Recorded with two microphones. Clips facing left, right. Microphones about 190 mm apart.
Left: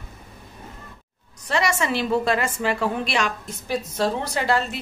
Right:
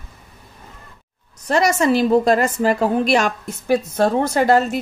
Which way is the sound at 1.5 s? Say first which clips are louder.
Right 7 dB; 40° right (ahead or behind).